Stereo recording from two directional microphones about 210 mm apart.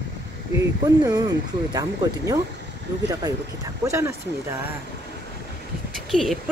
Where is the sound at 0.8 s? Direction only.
20° right (ahead or behind).